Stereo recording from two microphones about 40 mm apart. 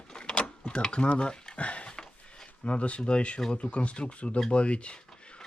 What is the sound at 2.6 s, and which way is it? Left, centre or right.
Speech, left.